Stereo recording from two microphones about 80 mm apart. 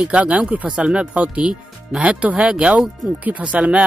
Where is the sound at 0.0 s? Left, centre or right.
Centre.